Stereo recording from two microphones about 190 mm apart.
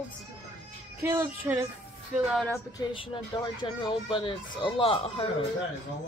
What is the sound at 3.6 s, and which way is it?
Speech, 25° left (ahead or behind).